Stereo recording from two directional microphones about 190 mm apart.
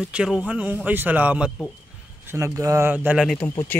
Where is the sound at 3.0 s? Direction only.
Centre (ahead or behind).